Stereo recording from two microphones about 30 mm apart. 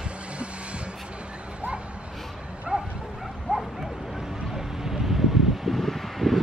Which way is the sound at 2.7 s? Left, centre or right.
Right.